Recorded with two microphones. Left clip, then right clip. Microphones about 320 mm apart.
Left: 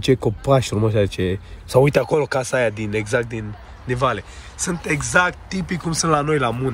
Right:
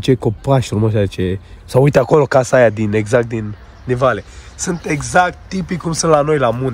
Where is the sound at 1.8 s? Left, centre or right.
Right.